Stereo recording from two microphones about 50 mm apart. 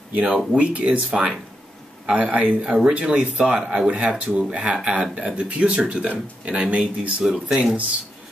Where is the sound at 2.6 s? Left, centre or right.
Centre.